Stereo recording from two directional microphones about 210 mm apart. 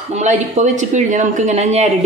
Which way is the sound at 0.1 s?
35° right (ahead or behind).